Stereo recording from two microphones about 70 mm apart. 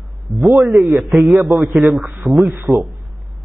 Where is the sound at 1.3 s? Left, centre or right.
Right.